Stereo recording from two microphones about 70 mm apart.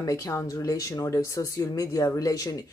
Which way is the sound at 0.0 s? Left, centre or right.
Left.